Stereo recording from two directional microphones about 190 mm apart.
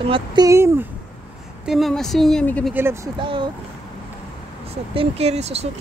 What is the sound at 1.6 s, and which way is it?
Speech, centre (ahead or behind).